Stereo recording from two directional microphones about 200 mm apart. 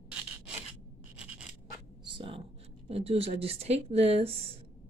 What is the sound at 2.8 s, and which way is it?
Speech, 30° right (ahead or behind).